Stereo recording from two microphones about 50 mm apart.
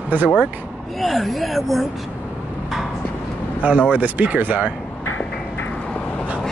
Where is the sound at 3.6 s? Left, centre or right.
Right.